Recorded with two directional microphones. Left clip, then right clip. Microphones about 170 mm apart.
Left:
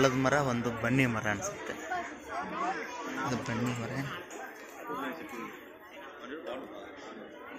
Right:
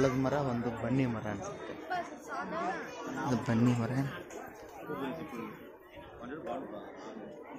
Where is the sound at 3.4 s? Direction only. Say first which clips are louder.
Right 3 dB; 55° right (ahead or behind).